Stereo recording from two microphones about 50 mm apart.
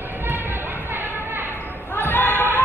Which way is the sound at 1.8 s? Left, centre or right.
Left.